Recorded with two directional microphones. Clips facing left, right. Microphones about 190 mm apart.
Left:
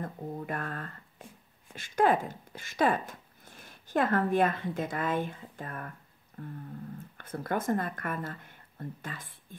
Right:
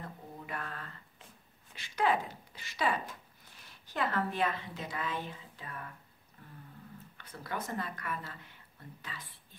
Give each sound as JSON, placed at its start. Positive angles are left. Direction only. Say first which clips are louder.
{"t": 0.0, "sound": "mantra", "louder": "left 9 dB", "side_deg": 50}
{"t": 1.8, "sound": "speech", "louder": "left 5 dB", "side_deg": 45}
{"t": 6.4, "sound": "a sound", "louder": "left 14 dB", "side_deg": 55}
{"t": 7.2, "sound": "speech", "louder": "left 8 dB", "side_deg": 50}